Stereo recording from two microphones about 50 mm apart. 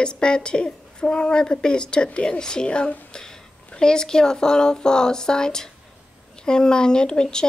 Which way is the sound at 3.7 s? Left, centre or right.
Centre.